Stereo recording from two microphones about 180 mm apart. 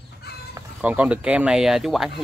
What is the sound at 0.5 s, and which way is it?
Speech, 10° right (ahead or behind).